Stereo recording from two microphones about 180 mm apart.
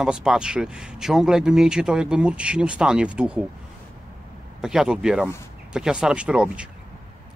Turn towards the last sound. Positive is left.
turn(degrees=-5)  # may be behind; listen again after turning